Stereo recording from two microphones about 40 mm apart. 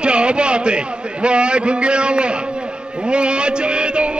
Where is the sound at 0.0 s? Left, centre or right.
Right.